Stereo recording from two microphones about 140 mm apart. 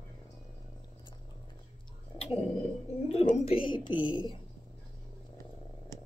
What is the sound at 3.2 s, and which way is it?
Speech, 55° left (ahead or behind).